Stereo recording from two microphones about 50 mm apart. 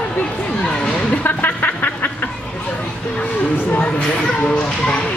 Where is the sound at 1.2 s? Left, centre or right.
Left.